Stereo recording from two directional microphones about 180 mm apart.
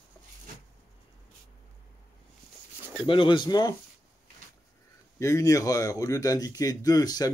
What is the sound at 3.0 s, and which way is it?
Speech, 25° left (ahead or behind).